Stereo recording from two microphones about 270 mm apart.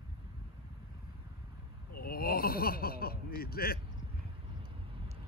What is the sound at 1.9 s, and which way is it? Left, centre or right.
Speech, left.